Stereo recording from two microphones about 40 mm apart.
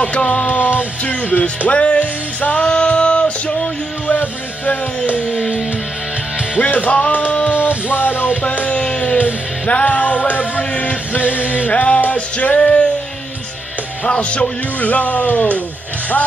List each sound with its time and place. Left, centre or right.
0.0 s speech: left
0.5 s a sound: left
1.7 s speech: left
2.5 s music: left
4.1 s music: left
6.6 s music: left
7.9 s music: left
8.8 s music: left
12.5 s music: left
14.0 s music: left
14.8 s speech: left